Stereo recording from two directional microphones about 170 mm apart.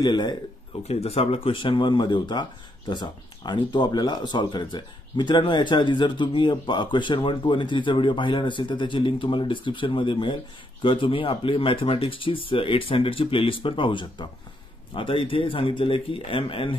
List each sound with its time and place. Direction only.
0.0 s speech: 25° left (ahead or behind)
0.8 s speech: 35° left (ahead or behind)